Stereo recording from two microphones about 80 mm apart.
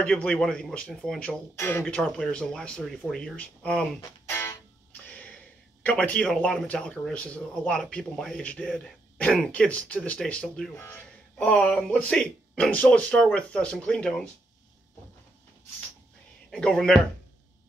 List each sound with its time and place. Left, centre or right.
0.0 s speech: centre
1.6 s speech: left
1.9 s speech: centre
4.3 s music: left
5.0 s a sound: left
5.9 s speech: centre
10.7 s speech: left
11.4 s speech: centre
16.4 s speech: centre